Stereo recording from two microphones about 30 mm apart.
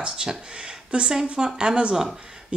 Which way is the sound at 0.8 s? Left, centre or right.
Right.